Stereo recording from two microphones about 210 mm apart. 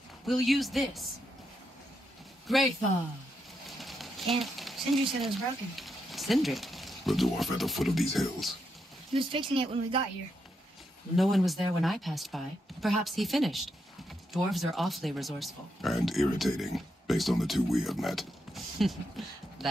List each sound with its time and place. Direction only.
0.3 s speech: centre (ahead or behind)
2.4 s a man's voice: centre (ahead or behind)
3.6 s a sound: centre (ahead or behind)
5.8 s speech: centre (ahead or behind)
9.3 s speech: 25° right (ahead or behind)
11.1 s speech: centre (ahead or behind)